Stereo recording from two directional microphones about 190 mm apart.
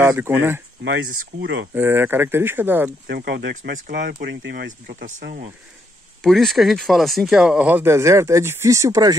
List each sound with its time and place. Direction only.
0.0 s speech: 10° right (ahead or behind)
0.8 s speech: 80° right
1.8 s speech: 10° right (ahead or behind)
3.1 s speech: 60° right (ahead or behind)
4.8 s speech: 40° right (ahead or behind)
6.2 s speech: centre (ahead or behind); by 9.1 s 15° right (ahead or behind)